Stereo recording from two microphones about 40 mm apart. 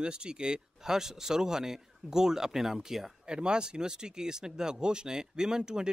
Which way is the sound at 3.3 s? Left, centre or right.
Right.